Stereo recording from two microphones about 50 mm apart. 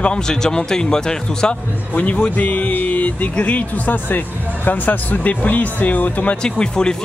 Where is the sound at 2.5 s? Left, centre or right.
Left.